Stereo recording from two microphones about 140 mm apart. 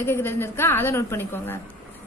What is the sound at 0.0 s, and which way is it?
A woman's voice, 15° left (ahead or behind).